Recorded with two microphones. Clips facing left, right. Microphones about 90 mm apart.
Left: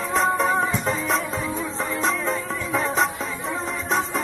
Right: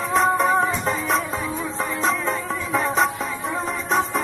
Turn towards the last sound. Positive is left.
turn(degrees=0)  # may be behind; listen again after turning